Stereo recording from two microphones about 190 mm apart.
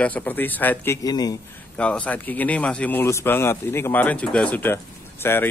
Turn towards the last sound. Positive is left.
turn(degrees=10)  # may be behind; listen again after turning